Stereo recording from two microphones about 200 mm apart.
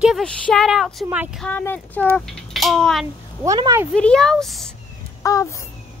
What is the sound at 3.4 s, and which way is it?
Speech, 15° right (ahead or behind).